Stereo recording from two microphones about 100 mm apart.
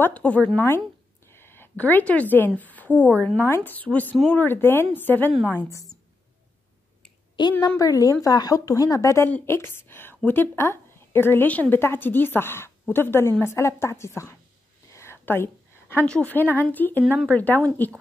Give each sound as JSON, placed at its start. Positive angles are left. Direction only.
{"t": 0.0, "sound": "a woman's voice", "side_deg": 15}
{"t": 5.7, "sound": "speech", "side_deg": 35}
{"t": 7.5, "sound": "a woman's voice", "side_deg": 20}
{"t": 7.8, "sound": "a woman's voice", "side_deg": 35}
{"t": 14.9, "sound": "a sound", "side_deg": 25}
{"t": 16.1, "sound": "speech", "side_deg": 15}